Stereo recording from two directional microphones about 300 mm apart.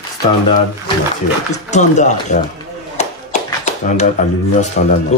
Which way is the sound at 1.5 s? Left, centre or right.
Left.